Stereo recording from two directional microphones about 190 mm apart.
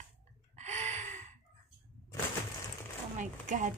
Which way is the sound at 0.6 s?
35° right (ahead or behind).